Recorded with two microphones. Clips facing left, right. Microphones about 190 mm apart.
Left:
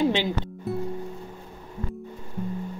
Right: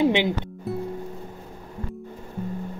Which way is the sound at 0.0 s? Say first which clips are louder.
Right 3 dB; 15° right (ahead or behind).